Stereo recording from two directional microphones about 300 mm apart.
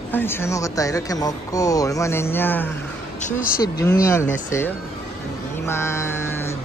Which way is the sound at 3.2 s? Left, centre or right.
Left.